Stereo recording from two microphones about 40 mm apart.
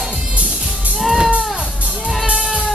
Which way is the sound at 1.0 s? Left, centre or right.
Centre.